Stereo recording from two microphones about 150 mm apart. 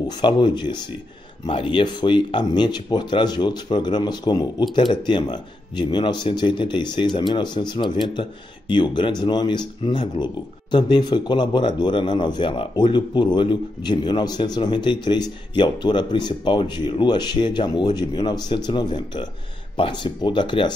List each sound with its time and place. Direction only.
0.1 s speech: 30° left (ahead or behind)